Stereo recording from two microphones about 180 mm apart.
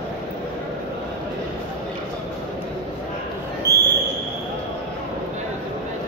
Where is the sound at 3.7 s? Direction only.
15° left (ahead or behind).